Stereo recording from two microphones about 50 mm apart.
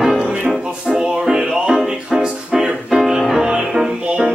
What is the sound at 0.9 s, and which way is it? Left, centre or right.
Music, centre.